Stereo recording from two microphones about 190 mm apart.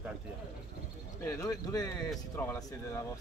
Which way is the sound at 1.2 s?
15° left (ahead or behind).